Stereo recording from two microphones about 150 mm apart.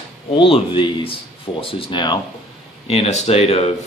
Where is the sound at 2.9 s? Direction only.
45° left (ahead or behind).